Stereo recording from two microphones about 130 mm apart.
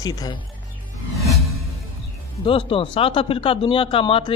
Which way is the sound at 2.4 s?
45° left (ahead or behind).